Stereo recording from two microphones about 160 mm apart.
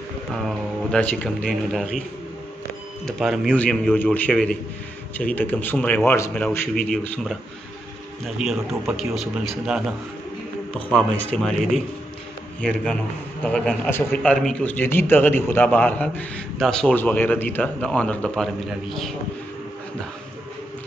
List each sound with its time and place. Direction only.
0.3 s a man's voice: 5° left (ahead or behind)
3.1 s a man's voice: centre (ahead or behind); by 6.3 s 15° left (ahead or behind)
6.3 s a man's voice: 5° left (ahead or behind)
8.4 s a man's voice: centre (ahead or behind)
13.4 s a man's voice: 5° left (ahead or behind)